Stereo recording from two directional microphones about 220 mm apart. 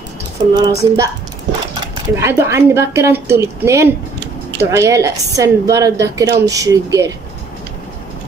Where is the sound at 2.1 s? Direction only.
10° right (ahead or behind).